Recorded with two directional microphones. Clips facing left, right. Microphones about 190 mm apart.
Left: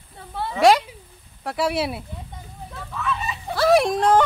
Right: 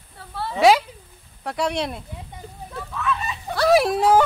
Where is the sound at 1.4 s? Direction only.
Centre (ahead or behind).